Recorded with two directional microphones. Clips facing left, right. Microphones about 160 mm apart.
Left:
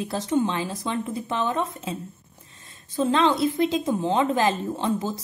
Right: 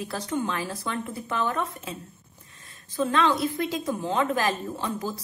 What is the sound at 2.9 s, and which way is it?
Speech, 25° left (ahead or behind).